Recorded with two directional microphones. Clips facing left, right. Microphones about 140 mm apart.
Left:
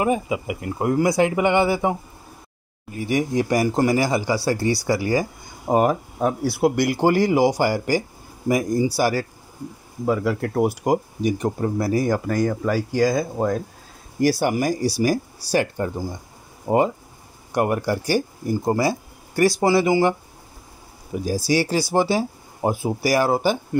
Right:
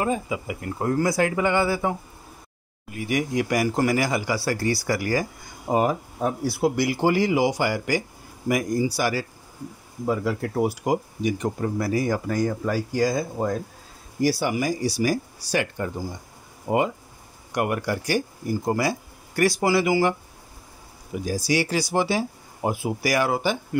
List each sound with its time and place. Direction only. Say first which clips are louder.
0.0 s speech: left 4 dB; 15° left (ahead or behind)
3.0 s speech: left 3 dB; 30° left (ahead or behind)
5.7 s speech: left 3 dB; 55° left (ahead or behind)
6.2 s speech: left 3 dB; 65° left (ahead or behind); by 9.1 s 30° left (ahead or behind)
10.0 s speech: left 3 dB; 65° left (ahead or behind); by 11.5 s 45° left (ahead or behind)
11.6 s speech: left 3 dB; 35° left (ahead or behind)
12.3 s speech: left 3 dB; 70° left (ahead or behind)
14.2 s speech: left 3 dB; 50° left (ahead or behind); by 23.8 s 35° left (ahead or behind)